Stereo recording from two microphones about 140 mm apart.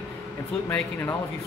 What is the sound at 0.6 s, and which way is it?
Speech, 15° left (ahead or behind).